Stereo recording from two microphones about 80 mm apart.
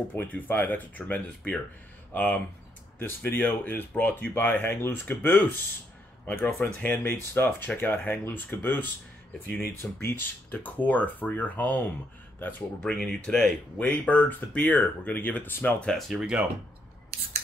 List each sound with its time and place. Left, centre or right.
0.1 s speech: left
12.9 s speech: centre
13.8 s speech: centre
15.9 s speech: centre